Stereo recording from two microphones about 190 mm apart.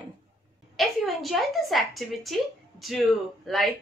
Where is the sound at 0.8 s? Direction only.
Centre (ahead or behind).